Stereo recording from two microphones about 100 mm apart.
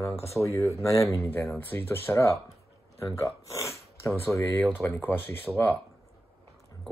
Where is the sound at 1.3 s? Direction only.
20° left (ahead or behind).